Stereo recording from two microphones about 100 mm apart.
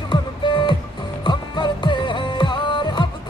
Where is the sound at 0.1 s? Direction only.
50° left (ahead or behind).